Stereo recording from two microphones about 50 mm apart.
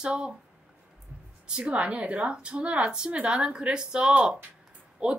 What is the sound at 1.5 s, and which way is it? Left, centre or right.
A woman's voice, centre.